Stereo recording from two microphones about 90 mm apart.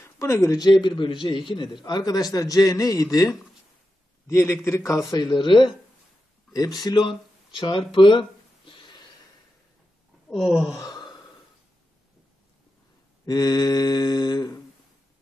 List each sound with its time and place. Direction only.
0.0 s speech: 30° left (ahead or behind)
0.6 s a man's voice: 60° left (ahead or behind); by 5.0 s 30° left (ahead or behind)
5.1 s speech: 55° left (ahead or behind)
6.5 s speech: 45° left (ahead or behind); by 9.0 s 60° left (ahead or behind)
10.3 s speech: 5° right (ahead or behind)
13.2 s a man's voice: 45° left (ahead or behind)